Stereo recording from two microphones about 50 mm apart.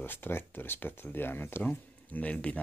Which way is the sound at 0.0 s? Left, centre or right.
Left.